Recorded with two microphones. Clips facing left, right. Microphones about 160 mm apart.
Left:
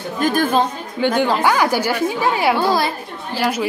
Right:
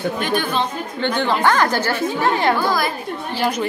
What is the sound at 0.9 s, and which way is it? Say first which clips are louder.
A woman's voice: left 3 dB; 10° left (ahead or behind).